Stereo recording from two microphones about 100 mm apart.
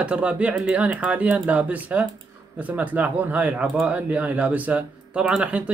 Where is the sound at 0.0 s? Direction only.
10° right (ahead or behind).